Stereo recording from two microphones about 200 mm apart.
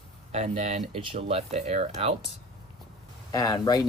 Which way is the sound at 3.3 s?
15° left (ahead or behind).